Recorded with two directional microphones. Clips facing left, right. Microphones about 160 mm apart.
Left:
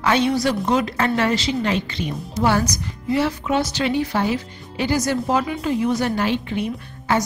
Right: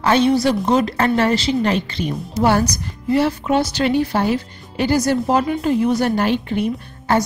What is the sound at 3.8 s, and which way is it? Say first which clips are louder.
Speech: right 3 dB; 50° right (ahead or behind).